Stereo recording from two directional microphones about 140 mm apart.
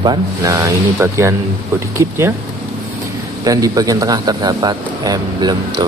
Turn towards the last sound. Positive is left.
turn(degrees=-30)  # may be behind; listen again after turning